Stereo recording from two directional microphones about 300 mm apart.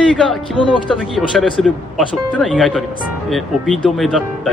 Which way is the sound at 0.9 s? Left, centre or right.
Centre.